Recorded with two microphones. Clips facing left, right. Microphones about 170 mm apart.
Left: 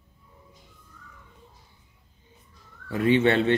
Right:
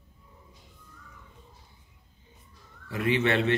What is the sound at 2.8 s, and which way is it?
Speech, 30° left (ahead or behind).